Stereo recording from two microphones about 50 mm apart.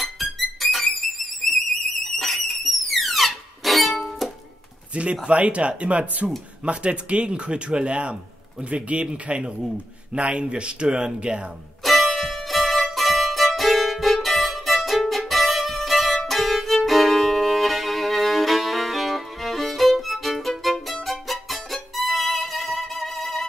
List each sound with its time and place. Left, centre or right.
0.0 s music: centre
4.9 s speech: right
11.8 s music: centre
16.3 s violin: centre